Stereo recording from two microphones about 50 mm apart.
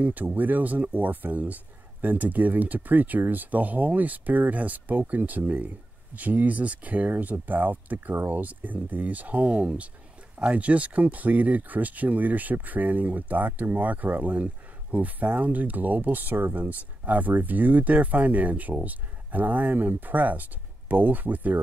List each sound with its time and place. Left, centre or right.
0.0 s speech: right